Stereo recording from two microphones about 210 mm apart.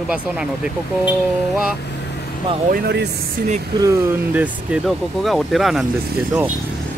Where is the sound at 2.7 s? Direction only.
50° right (ahead or behind).